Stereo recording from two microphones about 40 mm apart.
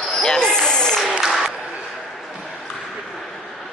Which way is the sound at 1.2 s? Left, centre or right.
Centre.